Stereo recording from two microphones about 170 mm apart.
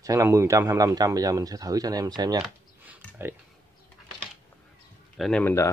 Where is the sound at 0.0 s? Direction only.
15° right (ahead or behind).